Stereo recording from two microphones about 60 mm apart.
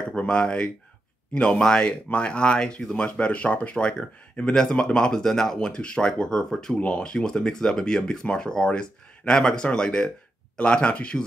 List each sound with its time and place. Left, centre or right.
0.1 s speech: centre